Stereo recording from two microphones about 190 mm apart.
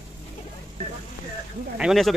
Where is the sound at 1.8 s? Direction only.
Centre (ahead or behind).